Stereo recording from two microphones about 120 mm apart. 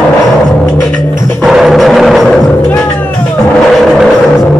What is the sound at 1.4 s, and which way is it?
Music, centre (ahead or behind).